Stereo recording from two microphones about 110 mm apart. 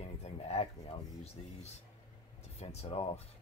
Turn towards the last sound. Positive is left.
turn(degrees=65)  # may be behind; listen again after turning